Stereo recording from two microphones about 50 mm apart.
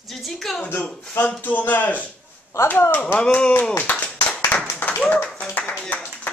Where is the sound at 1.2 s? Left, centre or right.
Left.